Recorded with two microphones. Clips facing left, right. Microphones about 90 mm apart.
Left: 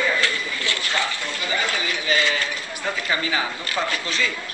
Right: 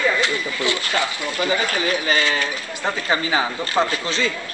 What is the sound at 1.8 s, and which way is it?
Speech, 40° right (ahead or behind).